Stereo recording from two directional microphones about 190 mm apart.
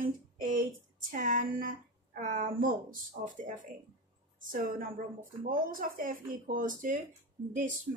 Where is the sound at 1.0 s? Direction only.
45° right (ahead or behind).